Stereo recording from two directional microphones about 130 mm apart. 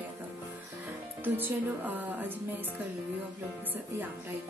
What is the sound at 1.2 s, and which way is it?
Speech, 15° right (ahead or behind).